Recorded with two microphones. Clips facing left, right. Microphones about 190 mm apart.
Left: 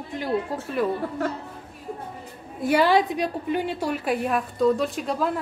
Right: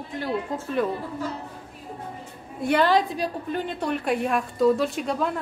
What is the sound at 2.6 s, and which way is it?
A woman's voice, 5° left (ahead or behind).